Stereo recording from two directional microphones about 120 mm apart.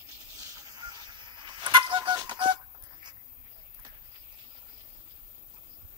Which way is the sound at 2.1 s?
40° right (ahead or behind).